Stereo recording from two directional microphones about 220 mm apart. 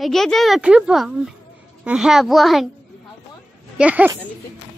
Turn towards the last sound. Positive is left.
turn(degrees=-5)  # may be behind; listen again after turning